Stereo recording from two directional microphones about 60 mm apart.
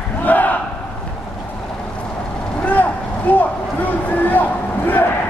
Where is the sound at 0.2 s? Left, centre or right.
Left.